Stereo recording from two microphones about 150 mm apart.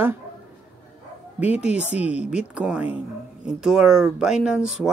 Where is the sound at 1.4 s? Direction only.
10° right (ahead or behind).